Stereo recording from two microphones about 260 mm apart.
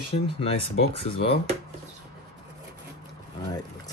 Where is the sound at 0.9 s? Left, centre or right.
Left.